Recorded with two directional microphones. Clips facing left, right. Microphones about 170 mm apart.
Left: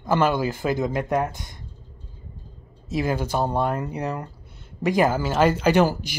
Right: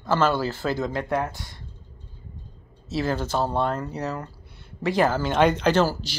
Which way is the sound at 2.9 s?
15° left (ahead or behind).